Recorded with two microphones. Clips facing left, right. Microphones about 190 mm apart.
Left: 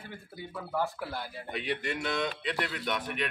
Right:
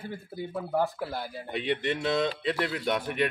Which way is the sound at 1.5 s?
25° right (ahead or behind).